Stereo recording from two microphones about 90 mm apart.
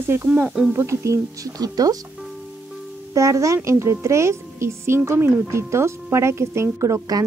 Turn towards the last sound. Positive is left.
turn(degrees=-40)  # may be behind; listen again after turning